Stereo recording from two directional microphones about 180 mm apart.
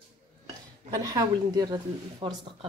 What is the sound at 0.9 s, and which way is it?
Speech, 20° right (ahead or behind).